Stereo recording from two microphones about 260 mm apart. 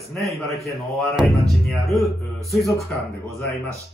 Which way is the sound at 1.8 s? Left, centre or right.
Centre.